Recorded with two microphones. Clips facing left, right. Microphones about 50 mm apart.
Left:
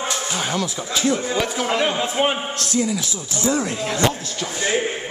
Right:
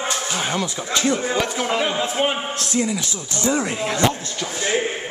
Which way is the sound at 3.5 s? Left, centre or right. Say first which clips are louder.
Right 1 dB; centre.